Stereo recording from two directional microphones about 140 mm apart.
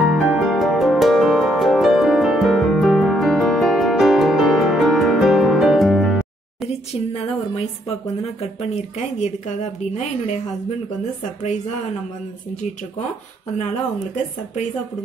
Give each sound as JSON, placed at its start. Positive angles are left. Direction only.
{"t": 0.0, "sound": "music", "side_deg": 0}
{"t": 8.2, "sound": "speech", "side_deg": 50}